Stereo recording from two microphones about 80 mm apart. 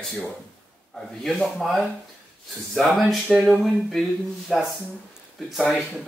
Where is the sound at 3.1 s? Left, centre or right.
Centre.